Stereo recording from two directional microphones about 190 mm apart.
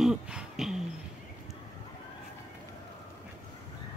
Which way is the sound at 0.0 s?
5° right (ahead or behind).